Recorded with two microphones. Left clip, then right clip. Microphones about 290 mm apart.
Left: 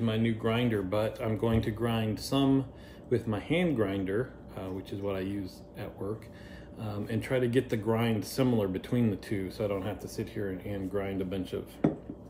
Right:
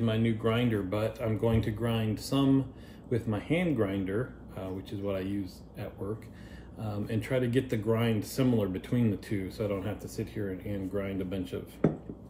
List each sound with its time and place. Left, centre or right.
0.0 s speech: centre